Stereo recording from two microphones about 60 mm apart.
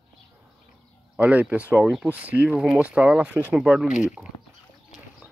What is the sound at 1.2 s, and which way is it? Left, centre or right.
Speech, right.